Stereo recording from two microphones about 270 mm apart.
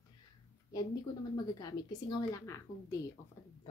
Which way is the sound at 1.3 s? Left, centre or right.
Centre.